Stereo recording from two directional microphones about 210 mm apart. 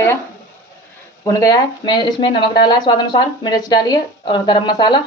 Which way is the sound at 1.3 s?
15° left (ahead or behind).